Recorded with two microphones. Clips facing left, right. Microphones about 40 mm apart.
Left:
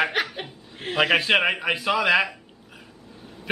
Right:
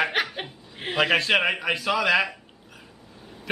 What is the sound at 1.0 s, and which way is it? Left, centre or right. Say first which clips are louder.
A man's voice: left 1 dB; centre.